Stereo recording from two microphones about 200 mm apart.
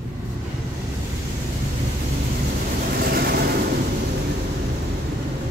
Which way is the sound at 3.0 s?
50° right (ahead or behind).